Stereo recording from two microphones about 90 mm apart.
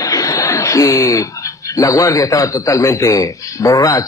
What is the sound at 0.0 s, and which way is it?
A man's voice, 40° left (ahead or behind).